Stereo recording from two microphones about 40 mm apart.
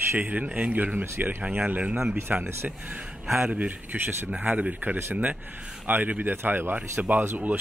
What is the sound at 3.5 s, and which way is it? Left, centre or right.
Speech, right.